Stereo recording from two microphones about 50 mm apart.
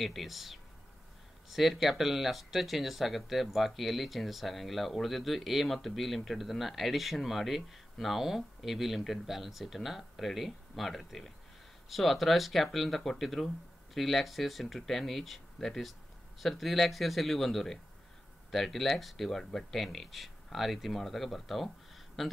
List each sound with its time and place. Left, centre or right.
0.0 s speech: centre